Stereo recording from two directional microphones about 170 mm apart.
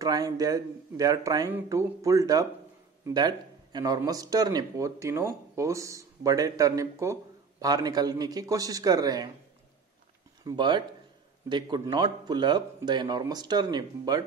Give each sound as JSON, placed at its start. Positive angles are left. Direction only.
{"t": 0.0, "sound": "speech", "side_deg": -20}
{"t": 10.4, "sound": "speech", "side_deg": -25}